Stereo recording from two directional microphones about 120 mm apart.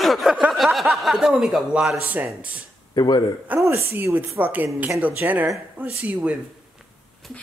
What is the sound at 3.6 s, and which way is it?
Speech, 20° right (ahead or behind).